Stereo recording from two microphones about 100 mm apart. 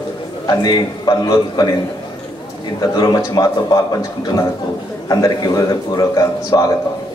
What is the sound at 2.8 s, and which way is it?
A man's voice, 40° left (ahead or behind).